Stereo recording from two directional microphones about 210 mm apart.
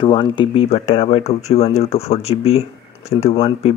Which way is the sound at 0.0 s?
25° left (ahead or behind).